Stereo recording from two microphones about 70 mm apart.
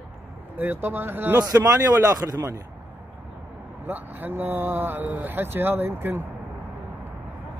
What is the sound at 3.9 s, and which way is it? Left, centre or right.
Speech, right.